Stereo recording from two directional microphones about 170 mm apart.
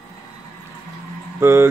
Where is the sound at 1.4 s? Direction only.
15° right (ahead or behind).